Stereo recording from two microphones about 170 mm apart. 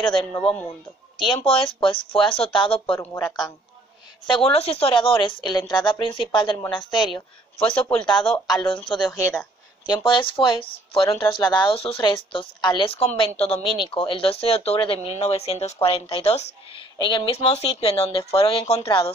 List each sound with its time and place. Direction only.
0.0 s a woman's voice: 30° left (ahead or behind)
1.3 s a woman's voice: 30° left (ahead or behind)
4.3 s a woman's voice: 35° left (ahead or behind)
8.0 s speech: 5° left (ahead or behind)
8.6 s a woman's voice: 30° left (ahead or behind)